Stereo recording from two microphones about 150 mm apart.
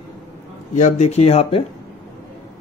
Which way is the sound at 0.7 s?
50° left (ahead or behind).